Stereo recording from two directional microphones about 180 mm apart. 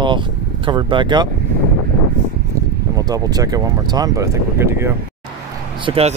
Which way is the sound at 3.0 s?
20° right (ahead or behind).